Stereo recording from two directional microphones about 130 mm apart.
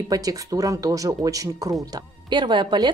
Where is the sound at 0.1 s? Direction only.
25° right (ahead or behind).